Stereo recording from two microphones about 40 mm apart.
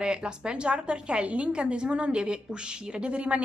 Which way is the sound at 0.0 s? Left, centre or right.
Right.